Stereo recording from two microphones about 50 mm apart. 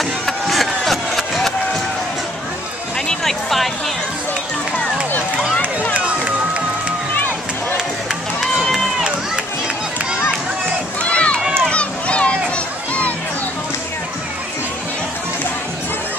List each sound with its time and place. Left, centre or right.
0.0 s music: centre
3.1 s music: centre
5.9 s run: right
8.4 s run: centre
11.0 s run: left
11.7 s a sound: left